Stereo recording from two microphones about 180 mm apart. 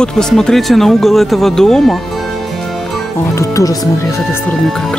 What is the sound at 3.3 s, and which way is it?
Speech, 20° left (ahead or behind).